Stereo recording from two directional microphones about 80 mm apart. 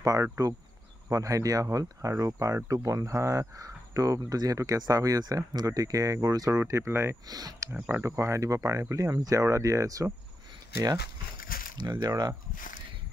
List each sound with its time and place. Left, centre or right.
0.0 s speech: right
6.6 s speech: right
7.2 s speech: right
7.7 s speech: right
8.0 s speech: right
11.8 s speech: right